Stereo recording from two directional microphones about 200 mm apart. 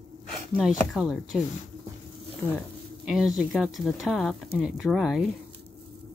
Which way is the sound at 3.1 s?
Centre (ahead or behind).